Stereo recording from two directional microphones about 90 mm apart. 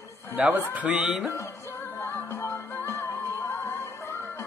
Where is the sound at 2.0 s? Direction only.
30° left (ahead or behind).